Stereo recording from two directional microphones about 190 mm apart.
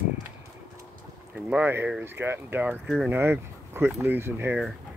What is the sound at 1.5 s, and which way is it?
Speech, 10° right (ahead or behind).